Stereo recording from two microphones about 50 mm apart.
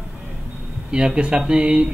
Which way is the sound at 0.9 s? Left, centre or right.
Centre.